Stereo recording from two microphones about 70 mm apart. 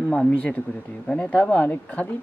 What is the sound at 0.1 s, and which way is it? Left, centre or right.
Speech, centre.